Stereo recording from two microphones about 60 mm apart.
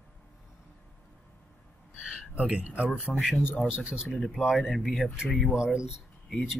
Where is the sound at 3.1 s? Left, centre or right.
Left.